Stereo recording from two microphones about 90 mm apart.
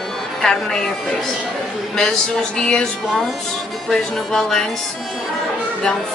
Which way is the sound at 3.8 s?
5° left (ahead or behind).